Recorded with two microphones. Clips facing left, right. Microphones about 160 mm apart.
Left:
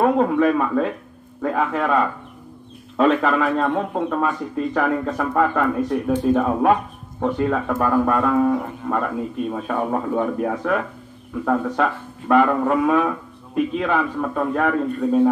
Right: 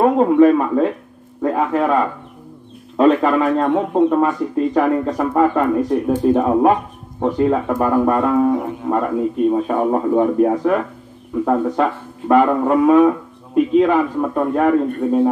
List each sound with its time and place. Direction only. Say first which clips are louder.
0.0 s a man's voice: right 5 dB; 30° right (ahead or behind)
3.0 s a man's voice: right 4 dB; 30° right (ahead or behind)